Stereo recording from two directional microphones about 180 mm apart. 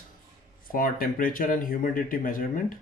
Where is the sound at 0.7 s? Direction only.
50° left (ahead or behind).